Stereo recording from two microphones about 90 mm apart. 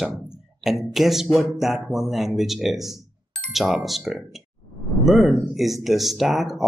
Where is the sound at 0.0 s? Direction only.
5° right (ahead or behind).